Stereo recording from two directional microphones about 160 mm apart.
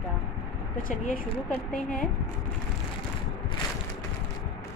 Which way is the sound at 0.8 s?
60° left (ahead or behind).